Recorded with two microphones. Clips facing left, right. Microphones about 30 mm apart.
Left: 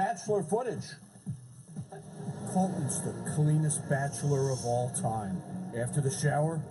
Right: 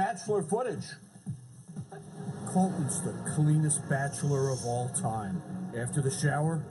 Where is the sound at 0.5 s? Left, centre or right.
Right.